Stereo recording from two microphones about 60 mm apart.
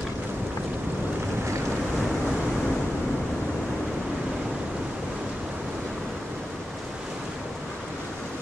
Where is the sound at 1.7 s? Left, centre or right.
Centre.